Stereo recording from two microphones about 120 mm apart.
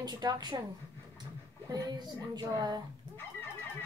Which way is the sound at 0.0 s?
35° right (ahead or behind).